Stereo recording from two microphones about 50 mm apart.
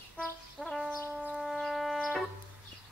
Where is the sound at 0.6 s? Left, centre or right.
Centre.